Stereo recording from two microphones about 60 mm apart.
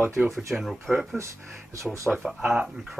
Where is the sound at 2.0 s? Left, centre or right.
Centre.